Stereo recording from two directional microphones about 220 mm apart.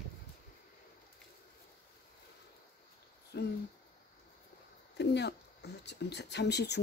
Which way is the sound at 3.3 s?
45° left (ahead or behind).